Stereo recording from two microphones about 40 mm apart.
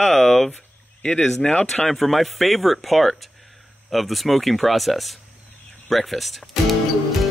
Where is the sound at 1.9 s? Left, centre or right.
Centre.